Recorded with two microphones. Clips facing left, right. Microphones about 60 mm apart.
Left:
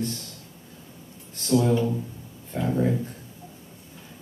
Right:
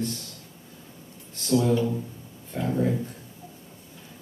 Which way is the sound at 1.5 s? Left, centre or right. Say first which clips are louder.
Left 1 dB; left.